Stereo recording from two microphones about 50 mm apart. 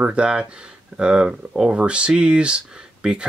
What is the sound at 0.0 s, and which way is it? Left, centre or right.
Speech, right.